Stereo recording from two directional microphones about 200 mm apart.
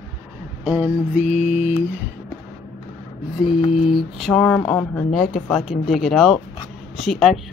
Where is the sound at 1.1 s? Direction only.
35° left (ahead or behind).